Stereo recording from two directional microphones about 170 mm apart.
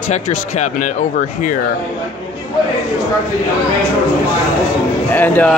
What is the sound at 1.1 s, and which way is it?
Speech, 50° left (ahead or behind).